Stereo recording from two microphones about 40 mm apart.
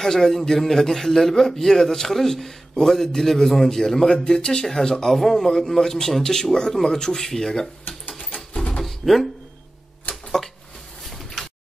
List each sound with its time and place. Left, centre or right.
0.0 s a man's voice: centre
5.2 s a man's voice: centre
5.5 s a man's voice: centre
8.8 s music: centre
11.1 s a sound: centre